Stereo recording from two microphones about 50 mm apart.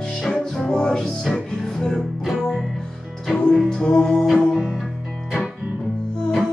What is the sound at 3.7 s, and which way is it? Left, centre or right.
Music, centre.